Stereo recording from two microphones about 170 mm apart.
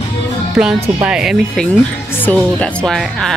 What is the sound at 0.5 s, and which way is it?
A woman's voice, 5° right (ahead or behind).